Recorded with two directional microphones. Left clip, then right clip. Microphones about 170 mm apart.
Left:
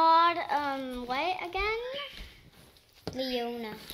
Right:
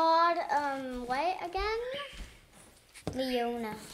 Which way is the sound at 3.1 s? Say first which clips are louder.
Right 1 dB; 5° left (ahead or behind).